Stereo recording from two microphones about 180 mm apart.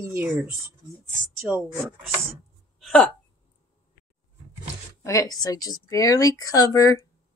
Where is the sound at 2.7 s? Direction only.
5° left (ahead or behind).